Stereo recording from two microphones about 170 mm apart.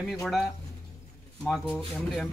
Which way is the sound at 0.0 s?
Centre (ahead or behind).